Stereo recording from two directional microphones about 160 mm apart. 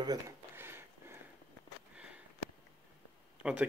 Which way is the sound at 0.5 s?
15° right (ahead or behind).